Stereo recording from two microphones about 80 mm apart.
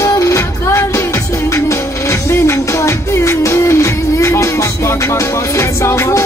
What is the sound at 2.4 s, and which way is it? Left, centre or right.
Music, left.